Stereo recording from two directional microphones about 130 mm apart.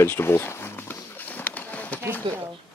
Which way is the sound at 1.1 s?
15° left (ahead or behind).